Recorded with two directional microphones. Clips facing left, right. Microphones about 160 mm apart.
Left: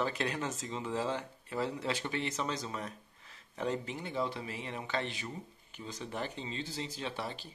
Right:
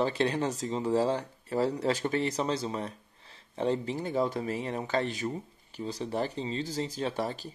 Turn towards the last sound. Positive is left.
turn(degrees=-40)  # may be behind; listen again after turning